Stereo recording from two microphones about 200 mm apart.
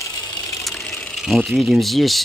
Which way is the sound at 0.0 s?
15° left (ahead or behind).